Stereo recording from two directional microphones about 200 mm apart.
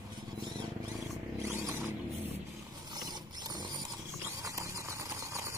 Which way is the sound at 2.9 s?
20° right (ahead or behind).